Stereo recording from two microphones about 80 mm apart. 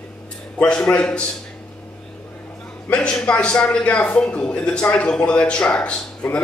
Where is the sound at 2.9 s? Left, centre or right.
Centre.